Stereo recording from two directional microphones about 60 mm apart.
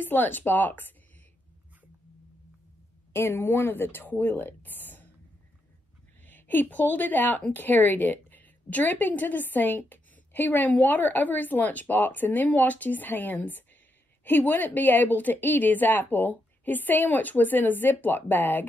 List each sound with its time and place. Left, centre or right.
0.0 s a woman's voice: left
3.1 s a woman's voice: left
6.2 s a woman's voice: left